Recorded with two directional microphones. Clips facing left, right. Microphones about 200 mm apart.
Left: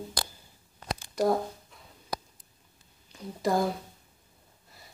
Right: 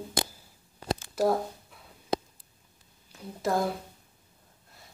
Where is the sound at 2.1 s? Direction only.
25° right (ahead or behind).